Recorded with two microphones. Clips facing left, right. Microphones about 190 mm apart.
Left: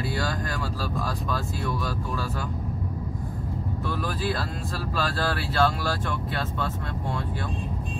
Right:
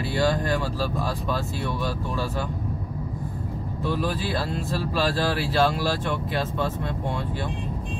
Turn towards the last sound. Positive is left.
turn(degrees=-20)  # may be behind; listen again after turning